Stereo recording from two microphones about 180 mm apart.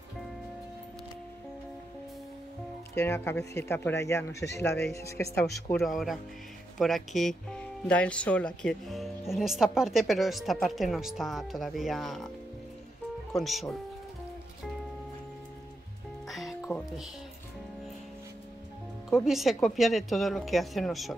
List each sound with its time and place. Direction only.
2.9 s speech: 15° left (ahead or behind)
5.7 s speech: centre (ahead or behind)
13.3 s speech: centre (ahead or behind)
16.3 s music: centre (ahead or behind)
19.0 s speech: centre (ahead or behind)